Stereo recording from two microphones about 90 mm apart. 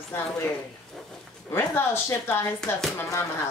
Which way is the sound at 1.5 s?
25° left (ahead or behind).